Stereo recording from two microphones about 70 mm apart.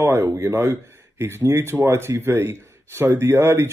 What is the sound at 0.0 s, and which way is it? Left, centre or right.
Speech, right.